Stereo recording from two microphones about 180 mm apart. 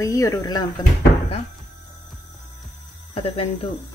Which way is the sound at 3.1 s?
30° left (ahead or behind).